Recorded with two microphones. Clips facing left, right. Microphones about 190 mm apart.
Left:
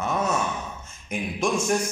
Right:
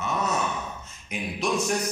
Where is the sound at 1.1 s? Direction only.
50° left (ahead or behind).